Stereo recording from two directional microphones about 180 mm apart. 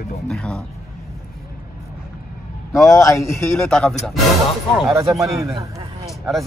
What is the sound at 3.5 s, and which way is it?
Speech, 5° left (ahead or behind).